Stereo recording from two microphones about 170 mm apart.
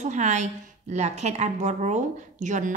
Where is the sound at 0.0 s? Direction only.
45° right (ahead or behind).